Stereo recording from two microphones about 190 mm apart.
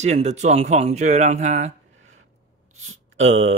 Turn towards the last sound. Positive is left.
turn(degrees=-35)  # may be behind; listen again after turning